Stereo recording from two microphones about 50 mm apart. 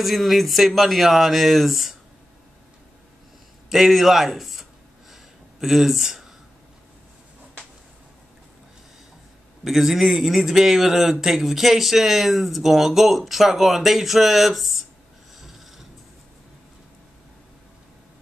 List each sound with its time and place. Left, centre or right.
0.0 s a man's voice: centre
3.7 s a man's voice: centre
5.1 s a sound: centre
9.7 s a man's voice: centre